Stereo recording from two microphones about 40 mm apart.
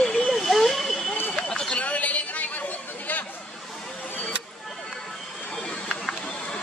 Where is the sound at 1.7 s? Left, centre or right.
Left.